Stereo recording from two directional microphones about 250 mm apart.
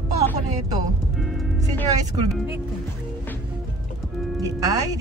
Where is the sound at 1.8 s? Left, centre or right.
Centre.